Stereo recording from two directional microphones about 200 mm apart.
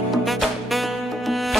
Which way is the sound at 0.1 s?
Centre (ahead or behind).